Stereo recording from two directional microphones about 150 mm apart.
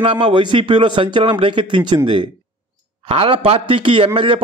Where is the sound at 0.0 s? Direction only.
35° right (ahead or behind).